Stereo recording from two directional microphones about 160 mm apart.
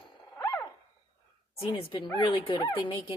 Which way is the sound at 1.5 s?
35° left (ahead or behind).